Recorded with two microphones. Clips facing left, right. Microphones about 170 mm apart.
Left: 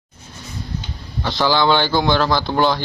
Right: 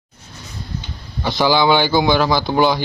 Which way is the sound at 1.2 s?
15° right (ahead or behind).